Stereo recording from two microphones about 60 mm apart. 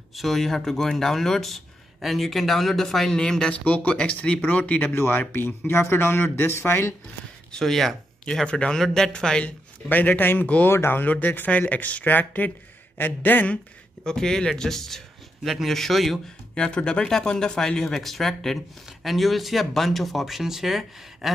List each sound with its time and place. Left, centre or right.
0.1 s speech: centre
3.5 s speech: left
4.9 s speech: left
7.5 s speech: centre
8.5 s a man's voice: centre
9.4 s speech: left
14.0 s a man's voice: centre
16.5 s a man's voice: centre